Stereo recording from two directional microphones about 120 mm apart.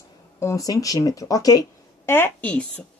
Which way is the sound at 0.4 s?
25° left (ahead or behind).